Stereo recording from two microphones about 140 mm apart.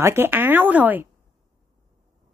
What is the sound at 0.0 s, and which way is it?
A woman's voice, 15° right (ahead or behind).